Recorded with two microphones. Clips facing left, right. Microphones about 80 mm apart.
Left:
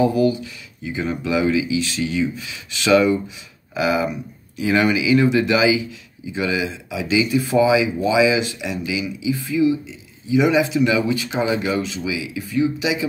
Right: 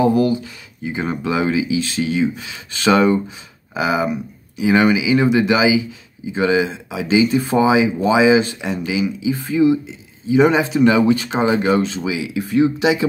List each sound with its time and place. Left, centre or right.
0.0 s speech: right
3.7 s speech: right